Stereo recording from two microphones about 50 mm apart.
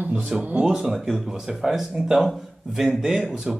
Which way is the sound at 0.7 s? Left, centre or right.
Centre.